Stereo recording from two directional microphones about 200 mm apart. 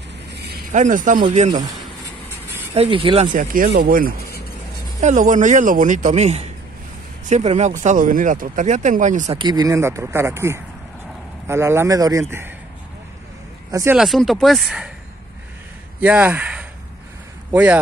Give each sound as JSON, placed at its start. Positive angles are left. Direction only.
{"t": 0.3, "sound": "a sound", "side_deg": -55}
{"t": 0.7, "sound": "speech", "side_deg": -40}
{"t": 2.7, "sound": "speech", "side_deg": -30}
{"t": 3.3, "sound": "speech", "side_deg": -45}
{"t": 9.4, "sound": "speech", "side_deg": -20}
{"t": 13.7, "sound": "speech", "side_deg": -15}
{"t": 13.9, "sound": "speech", "side_deg": 0}
{"t": 16.0, "sound": "speech", "side_deg": -5}